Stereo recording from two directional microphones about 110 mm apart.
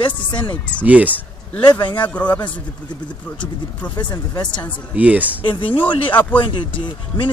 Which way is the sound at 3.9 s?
40° left (ahead or behind).